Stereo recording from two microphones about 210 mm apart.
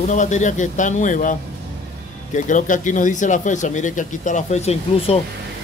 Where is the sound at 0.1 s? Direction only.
35° left (ahead or behind).